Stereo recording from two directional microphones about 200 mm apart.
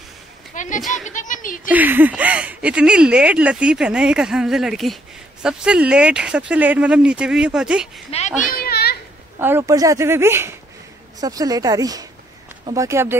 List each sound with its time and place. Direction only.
0.5 s a sound: 40° left (ahead or behind)
0.9 s speech: 40° left (ahead or behind)
1.7 s speech: 10° right (ahead or behind)
8.1 s a child's voice: 30° left (ahead or behind)
8.5 s children playing: 50° left (ahead or behind)
9.4 s speech: 10° right (ahead or behind)